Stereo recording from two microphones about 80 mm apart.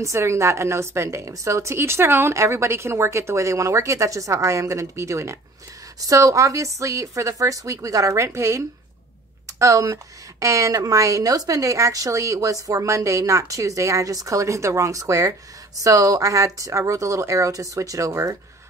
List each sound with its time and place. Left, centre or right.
0.0 s a woman's voice: right